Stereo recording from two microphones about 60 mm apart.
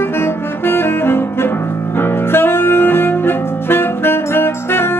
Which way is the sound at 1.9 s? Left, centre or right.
Left.